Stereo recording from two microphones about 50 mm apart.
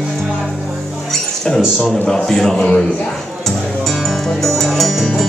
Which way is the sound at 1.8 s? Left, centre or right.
Centre.